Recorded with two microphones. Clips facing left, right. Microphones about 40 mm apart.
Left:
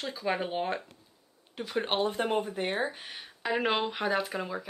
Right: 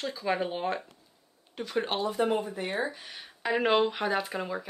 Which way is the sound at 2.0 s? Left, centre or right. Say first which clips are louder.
Right 2 dB; left.